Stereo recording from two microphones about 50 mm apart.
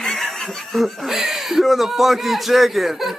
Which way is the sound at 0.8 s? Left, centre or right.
Centre.